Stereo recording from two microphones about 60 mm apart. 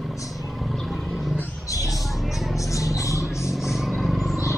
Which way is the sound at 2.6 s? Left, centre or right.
Left.